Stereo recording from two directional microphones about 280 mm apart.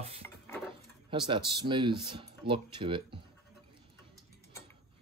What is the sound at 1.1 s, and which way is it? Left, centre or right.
Speech, centre.